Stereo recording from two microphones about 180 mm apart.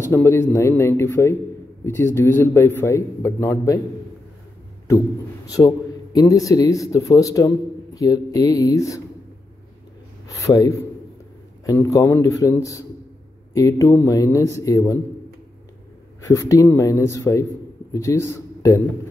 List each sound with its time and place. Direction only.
0.0 s a man's voice: 15° left (ahead or behind)
5.6 s a man's voice: 15° left (ahead or behind)
10.2 s a sound: 15° left (ahead or behind)
11.6 s a man's voice: 15° left (ahead or behind)
16.2 s a man's voice: 15° left (ahead or behind)